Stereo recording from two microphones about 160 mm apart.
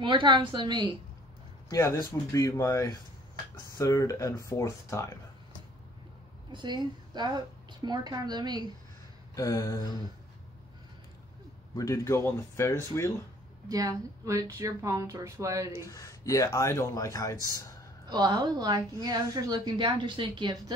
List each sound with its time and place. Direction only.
0.0 s a woman's voice: 30° right (ahead or behind)
1.7 s speech: 20° left (ahead or behind)
6.5 s a woman's voice: 30° right (ahead or behind)
9.3 s a sound: 20° left (ahead or behind)
11.7 s speech: 20° left (ahead or behind)
13.7 s a woman's voice: 20° right (ahead or behind)
15.9 s speech: 20° left (ahead or behind)
18.1 s a woman's voice: 25° right (ahead or behind)